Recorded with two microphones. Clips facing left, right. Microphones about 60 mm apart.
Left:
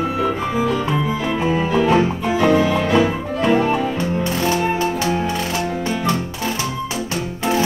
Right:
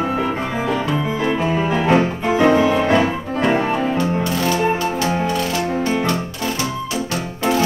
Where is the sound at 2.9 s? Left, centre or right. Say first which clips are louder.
Even; right.